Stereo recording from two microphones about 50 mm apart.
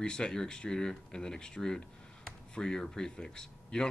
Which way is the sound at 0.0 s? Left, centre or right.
Centre.